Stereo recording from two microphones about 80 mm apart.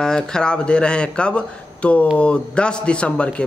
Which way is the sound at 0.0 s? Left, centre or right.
Centre.